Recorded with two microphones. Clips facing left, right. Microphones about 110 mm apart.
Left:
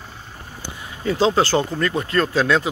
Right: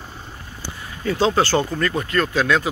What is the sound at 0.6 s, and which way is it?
Speech, 20° left (ahead or behind).